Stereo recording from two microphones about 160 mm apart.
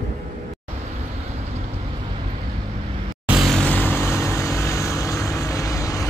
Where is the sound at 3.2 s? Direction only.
Centre (ahead or behind).